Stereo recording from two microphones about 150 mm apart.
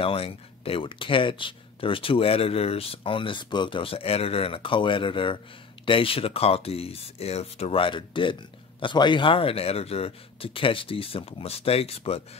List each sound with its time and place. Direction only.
0.0 s speech: 40° left (ahead or behind)